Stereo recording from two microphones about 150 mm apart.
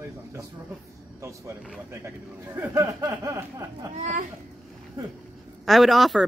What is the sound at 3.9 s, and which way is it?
Speech, 60° right (ahead or behind).